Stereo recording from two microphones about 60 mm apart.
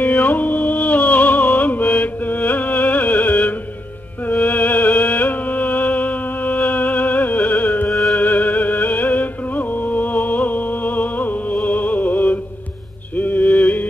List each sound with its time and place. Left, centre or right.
0.0 s music: left
7.9 s music: centre
8.2 s music: left
13.1 s a sound: left